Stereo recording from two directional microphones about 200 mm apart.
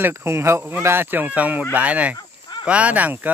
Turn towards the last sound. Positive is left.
turn(degrees=-10)  # may be behind; listen again after turning